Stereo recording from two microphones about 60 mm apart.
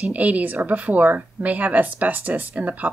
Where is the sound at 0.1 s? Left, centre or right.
Right.